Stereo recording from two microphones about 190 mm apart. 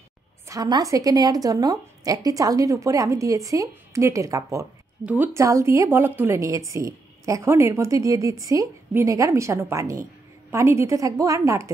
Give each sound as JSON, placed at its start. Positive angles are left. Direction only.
{"t": 0.5, "sound": "a woman's voice", "side_deg": -20}